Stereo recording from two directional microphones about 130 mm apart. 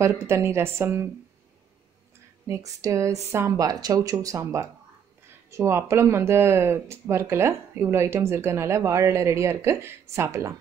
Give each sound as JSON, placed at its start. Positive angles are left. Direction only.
{"t": 0.0, "sound": "speech", "side_deg": -20}
{"t": 2.4, "sound": "speech", "side_deg": -25}